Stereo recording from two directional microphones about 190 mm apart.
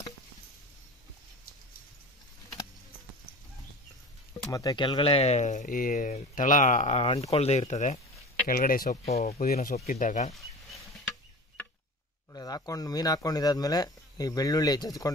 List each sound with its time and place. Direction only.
4.5 s speech: 20° left (ahead or behind)
7.3 s speech: 35° left (ahead or behind)
8.5 s speech: 50° left (ahead or behind)
9.0 s speech: 35° left (ahead or behind)
12.3 s speech: 20° left (ahead or behind)